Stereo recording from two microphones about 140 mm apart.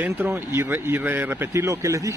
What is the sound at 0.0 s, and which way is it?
Speech, 20° right (ahead or behind).